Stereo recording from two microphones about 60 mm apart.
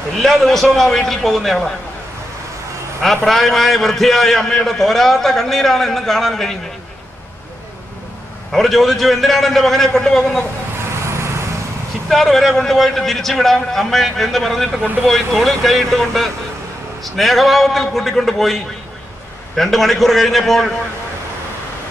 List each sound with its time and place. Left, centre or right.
0.2 s a man's voice: centre
3.0 s a man's voice: centre
8.5 s a man's voice: centre
11.1 s vehicle: right
12.1 s a man's voice: centre